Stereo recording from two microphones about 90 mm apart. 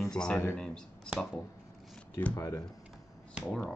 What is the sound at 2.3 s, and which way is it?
Speech, 40° left (ahead or behind).